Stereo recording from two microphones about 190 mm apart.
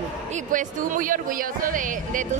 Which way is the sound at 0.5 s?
45° right (ahead or behind).